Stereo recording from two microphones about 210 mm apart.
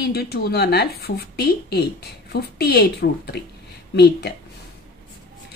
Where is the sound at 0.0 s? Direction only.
50° left (ahead or behind).